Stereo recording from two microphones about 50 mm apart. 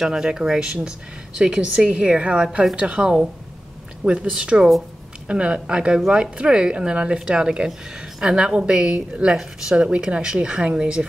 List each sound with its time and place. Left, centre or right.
0.0 s a woman's voice: centre